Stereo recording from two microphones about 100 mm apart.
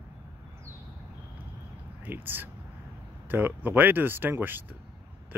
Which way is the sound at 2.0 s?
20° right (ahead or behind).